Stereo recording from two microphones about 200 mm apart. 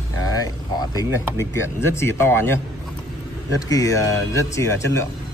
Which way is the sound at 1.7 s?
15° left (ahead or behind).